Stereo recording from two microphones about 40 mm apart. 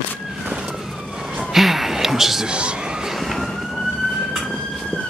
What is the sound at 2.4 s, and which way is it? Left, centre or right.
Speech, right.